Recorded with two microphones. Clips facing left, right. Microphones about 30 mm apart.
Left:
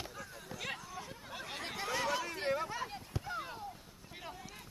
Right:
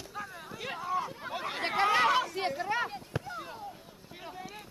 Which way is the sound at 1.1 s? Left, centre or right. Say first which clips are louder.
Right 9 dB; right.